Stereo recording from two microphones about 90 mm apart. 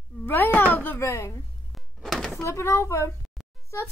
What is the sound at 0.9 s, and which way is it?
Speech, 35° left (ahead or behind).